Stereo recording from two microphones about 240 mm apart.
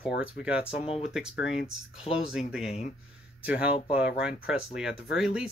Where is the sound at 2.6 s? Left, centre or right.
Left.